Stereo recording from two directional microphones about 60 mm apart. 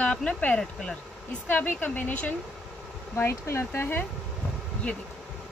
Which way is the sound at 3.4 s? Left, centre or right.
Left.